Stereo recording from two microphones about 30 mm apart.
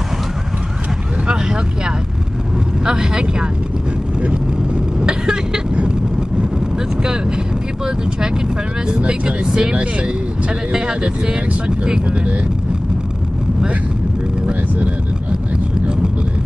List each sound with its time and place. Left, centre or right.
2.8 s speech: right
5.0 s vehicle: right
8.9 s speech: right
14.4 s vehicle: right